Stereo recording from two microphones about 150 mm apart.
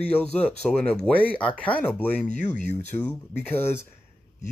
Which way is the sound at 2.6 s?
50° left (ahead or behind).